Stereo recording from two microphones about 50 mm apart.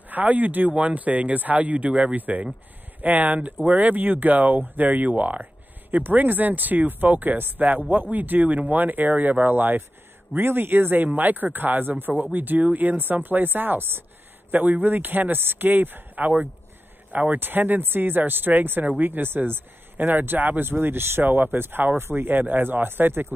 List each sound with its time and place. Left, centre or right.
0.1 s speech: right
14.5 s speech: right